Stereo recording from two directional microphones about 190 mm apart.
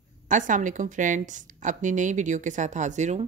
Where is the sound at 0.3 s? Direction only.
45° right (ahead or behind).